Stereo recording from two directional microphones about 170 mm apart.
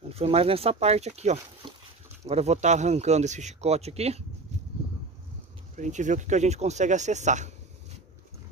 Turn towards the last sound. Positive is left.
turn(degrees=-45)  # may be behind; listen again after turning